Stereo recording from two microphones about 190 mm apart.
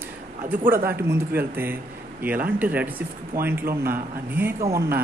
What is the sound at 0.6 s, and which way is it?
Speech, 50° right (ahead or behind).